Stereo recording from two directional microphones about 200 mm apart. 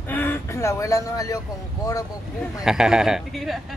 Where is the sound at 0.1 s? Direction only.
10° left (ahead or behind).